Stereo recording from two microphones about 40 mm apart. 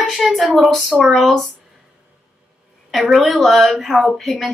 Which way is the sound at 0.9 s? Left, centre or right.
Right.